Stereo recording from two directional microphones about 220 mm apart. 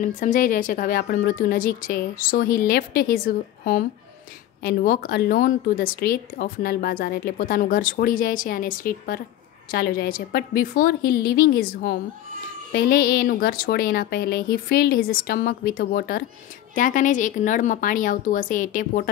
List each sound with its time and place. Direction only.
0.0 s a woman's voice: 35° left (ahead or behind)